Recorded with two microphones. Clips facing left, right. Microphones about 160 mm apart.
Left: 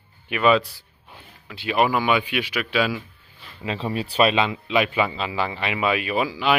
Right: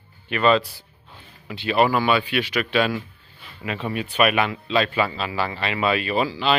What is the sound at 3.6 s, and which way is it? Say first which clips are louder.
Speech: left 1 dB; 30° left (ahead or behind).